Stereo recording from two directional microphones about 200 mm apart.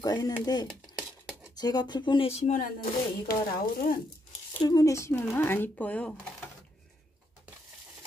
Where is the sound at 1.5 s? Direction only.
20° left (ahead or behind); by 4.0 s 45° left (ahead or behind).